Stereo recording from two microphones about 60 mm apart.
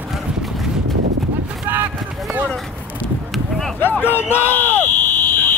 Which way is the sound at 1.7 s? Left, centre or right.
Right.